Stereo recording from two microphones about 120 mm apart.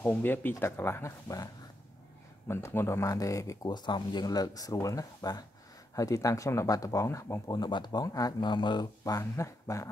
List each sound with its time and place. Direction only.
0.0 s speech: 15° left (ahead or behind)
2.4 s speech: 20° left (ahead or behind)